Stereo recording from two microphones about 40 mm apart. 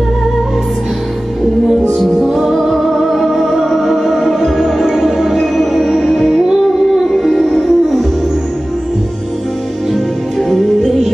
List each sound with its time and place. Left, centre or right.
2.1 s music: centre
2.5 s music: centre
5.6 s music: centre